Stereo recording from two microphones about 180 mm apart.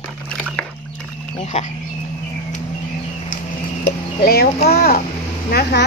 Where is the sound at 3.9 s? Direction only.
60° left (ahead or behind).